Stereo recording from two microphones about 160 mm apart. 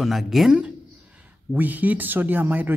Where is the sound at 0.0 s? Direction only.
Centre (ahead or behind).